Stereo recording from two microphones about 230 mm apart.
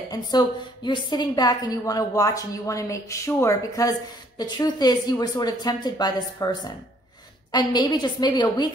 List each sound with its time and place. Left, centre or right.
0.1 s a woman's voice: centre
7.5 s a woman's voice: centre